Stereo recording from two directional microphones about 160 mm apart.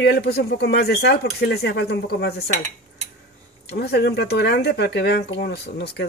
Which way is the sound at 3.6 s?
85° left.